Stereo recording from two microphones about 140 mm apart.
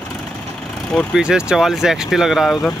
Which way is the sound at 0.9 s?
5° right (ahead or behind).